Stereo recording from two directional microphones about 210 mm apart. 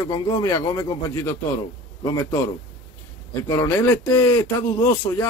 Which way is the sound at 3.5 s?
15° left (ahead or behind).